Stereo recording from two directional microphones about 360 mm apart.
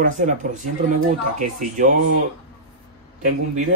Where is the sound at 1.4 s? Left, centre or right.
Right.